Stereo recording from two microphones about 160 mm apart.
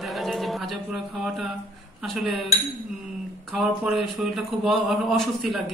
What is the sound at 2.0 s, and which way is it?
Speech, centre (ahead or behind).